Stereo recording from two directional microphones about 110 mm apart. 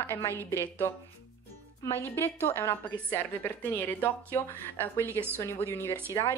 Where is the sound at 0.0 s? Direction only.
20° left (ahead or behind).